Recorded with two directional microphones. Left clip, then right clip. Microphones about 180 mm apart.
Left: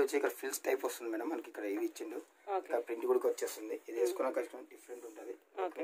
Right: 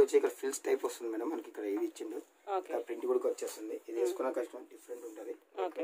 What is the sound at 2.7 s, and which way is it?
Speech, 30° left (ahead or behind).